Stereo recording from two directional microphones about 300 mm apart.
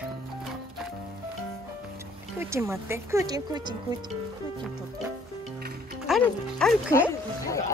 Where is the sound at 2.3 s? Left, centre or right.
Centre.